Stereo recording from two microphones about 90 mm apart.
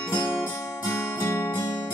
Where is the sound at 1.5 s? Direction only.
45° left (ahead or behind).